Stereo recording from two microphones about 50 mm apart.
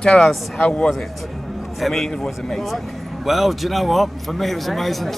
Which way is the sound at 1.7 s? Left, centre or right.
Centre.